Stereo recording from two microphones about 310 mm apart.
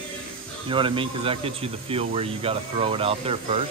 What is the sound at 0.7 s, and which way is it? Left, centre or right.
Speech, centre.